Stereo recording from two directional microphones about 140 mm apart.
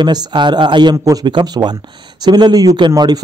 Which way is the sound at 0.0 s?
35° right (ahead or behind).